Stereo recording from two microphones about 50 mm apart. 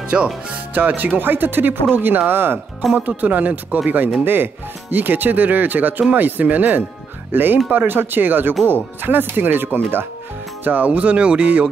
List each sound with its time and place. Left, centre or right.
0.1 s speech: right
0.5 s speech: right
2.9 s speech: right
4.2 s speech: right